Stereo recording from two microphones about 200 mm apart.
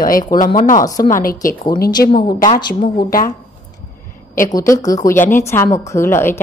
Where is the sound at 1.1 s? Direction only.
45° left (ahead or behind).